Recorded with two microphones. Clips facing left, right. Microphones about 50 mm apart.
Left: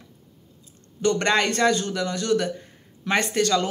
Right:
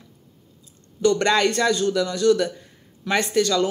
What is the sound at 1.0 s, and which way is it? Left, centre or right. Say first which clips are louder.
Speech: right 3 dB; left.